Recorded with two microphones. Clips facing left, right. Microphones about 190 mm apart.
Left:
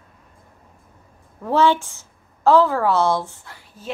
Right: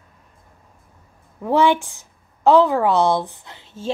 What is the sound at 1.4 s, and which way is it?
A woman's voice, 15° right (ahead or behind).